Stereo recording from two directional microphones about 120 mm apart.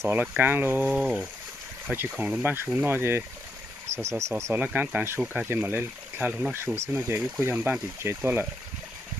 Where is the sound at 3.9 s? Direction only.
65° right (ahead or behind).